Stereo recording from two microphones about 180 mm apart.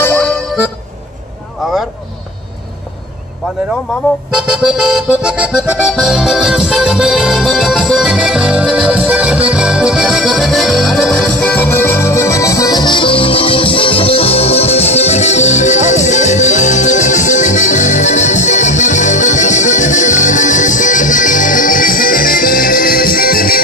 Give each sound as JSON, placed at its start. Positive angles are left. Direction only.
{"t": 0.0, "sound": "music", "side_deg": 5}
{"t": 4.3, "sound": "music", "side_deg": -5}